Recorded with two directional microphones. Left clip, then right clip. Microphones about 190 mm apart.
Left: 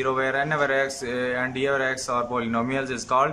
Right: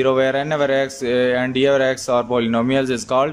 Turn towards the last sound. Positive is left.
turn(degrees=-20)  # may be behind; listen again after turning